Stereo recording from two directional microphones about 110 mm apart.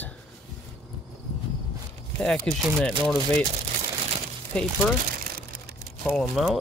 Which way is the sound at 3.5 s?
65° right (ahead or behind).